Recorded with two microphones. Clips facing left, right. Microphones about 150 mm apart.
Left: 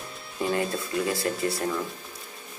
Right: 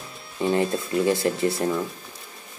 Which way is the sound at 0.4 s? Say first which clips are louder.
Right 4 dB; 25° right (ahead or behind).